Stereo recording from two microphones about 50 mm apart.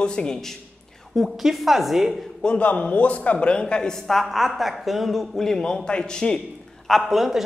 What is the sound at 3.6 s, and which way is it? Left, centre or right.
A woman's voice, centre.